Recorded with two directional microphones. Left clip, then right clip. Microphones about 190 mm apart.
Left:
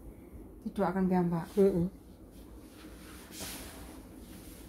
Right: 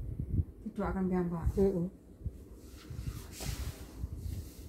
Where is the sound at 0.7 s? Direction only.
45° left (ahead or behind).